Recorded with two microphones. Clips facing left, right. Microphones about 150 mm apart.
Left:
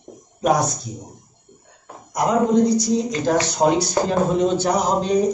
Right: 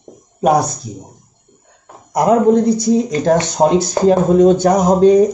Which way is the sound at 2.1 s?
55° right (ahead or behind).